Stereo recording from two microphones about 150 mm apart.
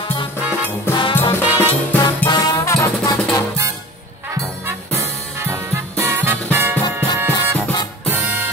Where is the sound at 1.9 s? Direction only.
15° left (ahead or behind).